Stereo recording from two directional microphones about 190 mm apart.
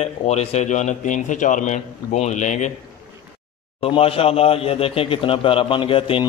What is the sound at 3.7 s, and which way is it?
A man's voice, 30° left (ahead or behind).